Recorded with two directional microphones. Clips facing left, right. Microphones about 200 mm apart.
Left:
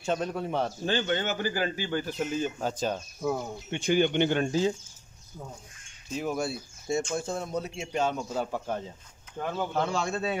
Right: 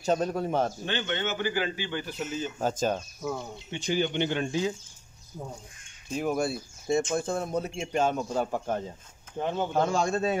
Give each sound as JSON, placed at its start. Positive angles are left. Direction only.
{"t": 0.0, "sound": "a man's voice", "side_deg": -40}
{"t": 0.8, "sound": "a man's voice", "side_deg": 40}
{"t": 2.6, "sound": "speech", "side_deg": -45}
{"t": 3.7, "sound": "speech", "side_deg": 55}
{"t": 6.1, "sound": "speech", "side_deg": -55}
{"t": 9.4, "sound": "speech", "side_deg": -20}
{"t": 9.8, "sound": "speech", "side_deg": -45}